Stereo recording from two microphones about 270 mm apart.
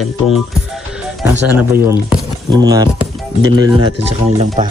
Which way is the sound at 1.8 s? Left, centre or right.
Centre.